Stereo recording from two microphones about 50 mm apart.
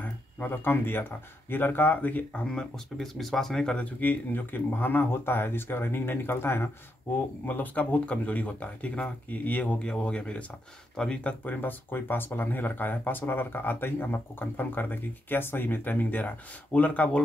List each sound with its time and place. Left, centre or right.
0.0 s a sound: left
1.5 s speech: left
2.0 s speech: left
2.4 s speech: centre
3.7 s speech: left
7.4 s speech: left
11.4 s speech: left